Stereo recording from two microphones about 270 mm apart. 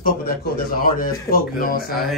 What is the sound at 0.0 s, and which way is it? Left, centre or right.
A man's voice, left.